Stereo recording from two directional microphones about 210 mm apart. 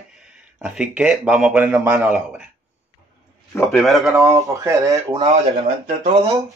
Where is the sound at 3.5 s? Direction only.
5° left (ahead or behind).